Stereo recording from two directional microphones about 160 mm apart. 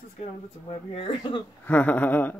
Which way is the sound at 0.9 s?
35° left (ahead or behind).